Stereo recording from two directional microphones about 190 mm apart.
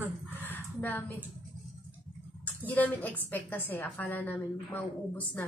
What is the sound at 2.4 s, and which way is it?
A woman's voice, 10° left (ahead or behind).